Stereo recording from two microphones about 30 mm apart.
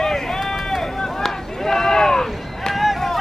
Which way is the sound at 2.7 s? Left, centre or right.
Centre.